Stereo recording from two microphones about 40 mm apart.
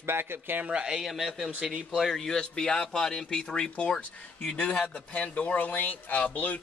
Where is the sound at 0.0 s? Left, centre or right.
Right.